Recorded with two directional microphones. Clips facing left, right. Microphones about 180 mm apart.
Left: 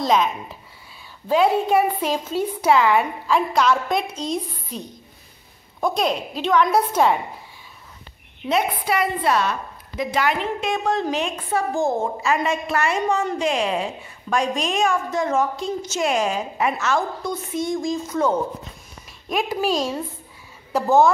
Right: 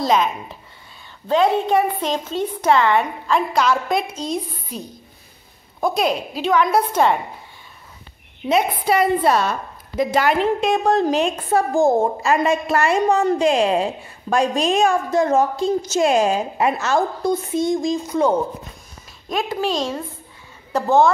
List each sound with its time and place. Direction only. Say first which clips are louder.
0.0 s a woman's voice: right 1 dB; centre (ahead or behind)
8.8 s a woman's voice: right 5 dB; 35° right (ahead or behind)
17.6 s speech: right 3 dB; 15° right (ahead or behind)
19.2 s a child's voice: even; 10° left (ahead or behind)